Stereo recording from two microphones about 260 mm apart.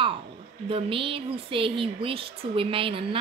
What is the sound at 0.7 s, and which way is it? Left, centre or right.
A woman's voice, right.